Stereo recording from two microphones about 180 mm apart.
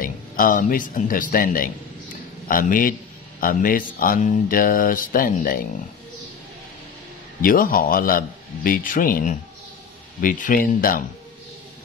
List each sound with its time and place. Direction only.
0.0 s speech: 50° left (ahead or behind)
7.4 s speech: 55° left (ahead or behind)